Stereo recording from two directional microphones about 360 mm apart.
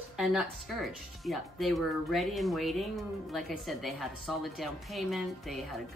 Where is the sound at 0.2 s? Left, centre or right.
Centre.